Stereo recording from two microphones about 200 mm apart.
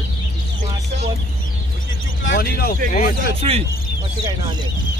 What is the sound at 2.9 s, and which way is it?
Speech, 40° left (ahead or behind).